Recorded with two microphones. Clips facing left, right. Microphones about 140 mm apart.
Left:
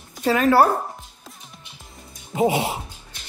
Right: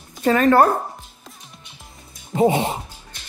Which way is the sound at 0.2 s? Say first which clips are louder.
Right 2 dB; 5° left (ahead or behind).